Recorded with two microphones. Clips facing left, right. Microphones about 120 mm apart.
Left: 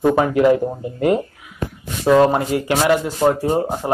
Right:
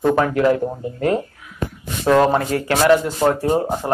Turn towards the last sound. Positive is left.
turn(degrees=10)  # may be behind; listen again after turning